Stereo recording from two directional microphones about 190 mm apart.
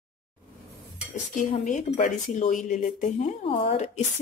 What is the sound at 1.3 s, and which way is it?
Speech, 40° left (ahead or behind).